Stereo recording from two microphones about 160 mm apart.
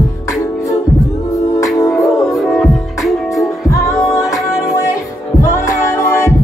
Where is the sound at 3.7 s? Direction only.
20° left (ahead or behind).